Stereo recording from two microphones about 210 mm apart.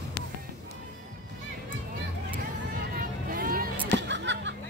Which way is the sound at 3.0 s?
45° right (ahead or behind).